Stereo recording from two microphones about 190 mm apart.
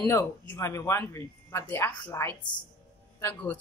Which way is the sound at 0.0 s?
15° left (ahead or behind).